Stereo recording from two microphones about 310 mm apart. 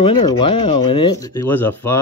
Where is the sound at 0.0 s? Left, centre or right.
Centre.